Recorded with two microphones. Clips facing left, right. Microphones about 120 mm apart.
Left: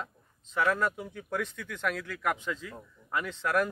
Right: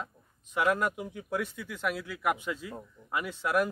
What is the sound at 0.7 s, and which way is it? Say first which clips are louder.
Speech: even; 15° right (ahead or behind).